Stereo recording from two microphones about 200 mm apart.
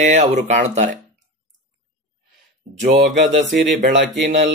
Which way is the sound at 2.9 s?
55° right (ahead or behind).